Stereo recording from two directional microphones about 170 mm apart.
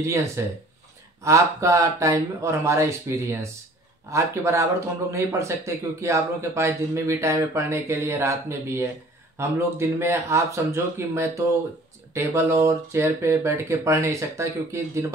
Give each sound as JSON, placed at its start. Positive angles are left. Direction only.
{"t": 0.0, "sound": "speech", "side_deg": -15}